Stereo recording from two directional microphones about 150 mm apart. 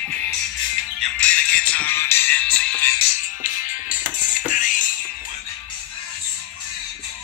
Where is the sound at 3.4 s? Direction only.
60° left (ahead or behind).